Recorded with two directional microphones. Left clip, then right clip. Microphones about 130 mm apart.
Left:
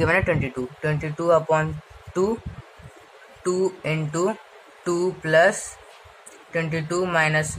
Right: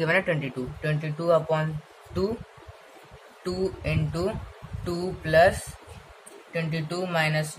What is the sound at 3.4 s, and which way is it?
Speech, 35° left (ahead or behind).